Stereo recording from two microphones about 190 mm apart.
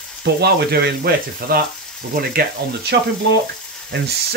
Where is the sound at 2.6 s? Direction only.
60° right (ahead or behind).